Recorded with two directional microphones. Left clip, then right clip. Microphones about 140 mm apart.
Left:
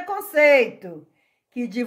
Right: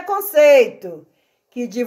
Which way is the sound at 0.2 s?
Centre (ahead or behind).